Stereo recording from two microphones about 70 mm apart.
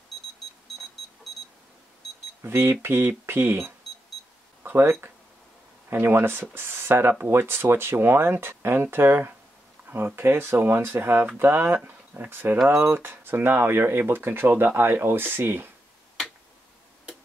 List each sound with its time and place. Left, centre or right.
1.3 s beep: centre
2.4 s speech: right